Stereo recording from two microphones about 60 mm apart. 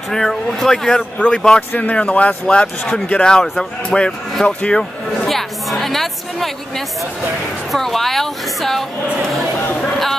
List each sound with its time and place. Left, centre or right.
0.1 s speech: centre
2.6 s a woman's voice: centre
5.3 s a woman's voice: centre
7.7 s a woman's voice: centre